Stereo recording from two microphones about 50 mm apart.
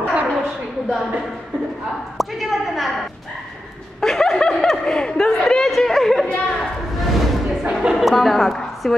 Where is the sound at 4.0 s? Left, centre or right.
Centre.